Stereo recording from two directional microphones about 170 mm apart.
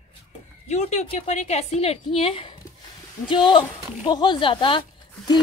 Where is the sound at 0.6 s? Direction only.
40° left (ahead or behind).